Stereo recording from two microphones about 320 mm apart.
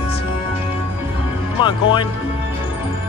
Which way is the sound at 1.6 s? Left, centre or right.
Centre.